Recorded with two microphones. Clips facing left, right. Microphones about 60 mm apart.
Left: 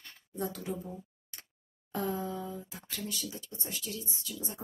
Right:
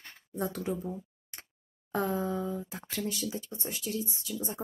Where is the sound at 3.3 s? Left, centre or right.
Right.